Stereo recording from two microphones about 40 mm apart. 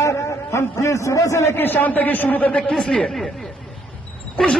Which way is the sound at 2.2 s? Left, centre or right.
Left.